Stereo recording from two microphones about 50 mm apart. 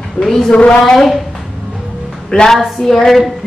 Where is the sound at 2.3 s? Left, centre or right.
Centre.